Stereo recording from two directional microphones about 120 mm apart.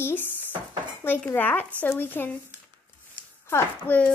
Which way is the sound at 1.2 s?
15° left (ahead or behind).